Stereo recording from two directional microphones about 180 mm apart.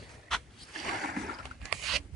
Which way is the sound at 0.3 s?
Centre (ahead or behind).